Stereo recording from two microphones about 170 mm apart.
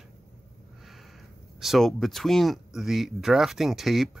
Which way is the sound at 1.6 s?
Centre (ahead or behind).